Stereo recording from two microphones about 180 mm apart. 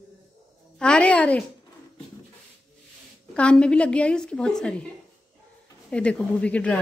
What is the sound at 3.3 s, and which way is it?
A woman's voice, 5° left (ahead or behind).